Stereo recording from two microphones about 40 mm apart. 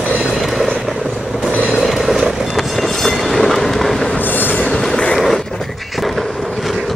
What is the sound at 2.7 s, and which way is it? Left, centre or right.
Train, centre.